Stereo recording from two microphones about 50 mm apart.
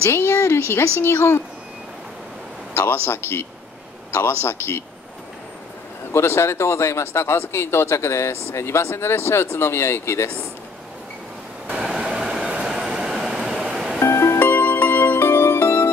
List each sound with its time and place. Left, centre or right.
0.1 s speech: left
2.7 s speech: left
6.1 s speech: left
11.8 s train: centre
12.9 s a sound: centre
14.0 s music: left
14.4 s music: left
15.1 s music: left